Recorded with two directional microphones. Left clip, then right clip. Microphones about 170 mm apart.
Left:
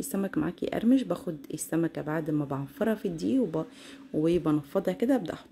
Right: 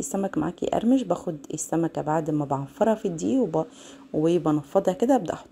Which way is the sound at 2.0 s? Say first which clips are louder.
Right 6 dB; 10° left (ahead or behind).